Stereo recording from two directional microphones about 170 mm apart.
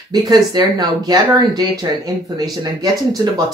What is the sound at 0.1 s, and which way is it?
Speech, 25° right (ahead or behind).